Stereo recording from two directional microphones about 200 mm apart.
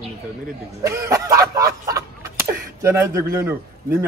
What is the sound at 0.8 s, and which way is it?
Speech, 15° right (ahead or behind).